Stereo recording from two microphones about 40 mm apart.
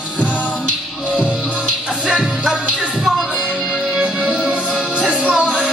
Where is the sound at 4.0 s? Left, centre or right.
Right.